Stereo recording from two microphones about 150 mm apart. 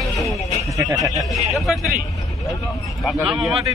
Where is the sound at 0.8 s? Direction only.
20° right (ahead or behind).